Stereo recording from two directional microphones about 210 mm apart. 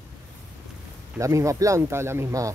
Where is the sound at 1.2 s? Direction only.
15° right (ahead or behind).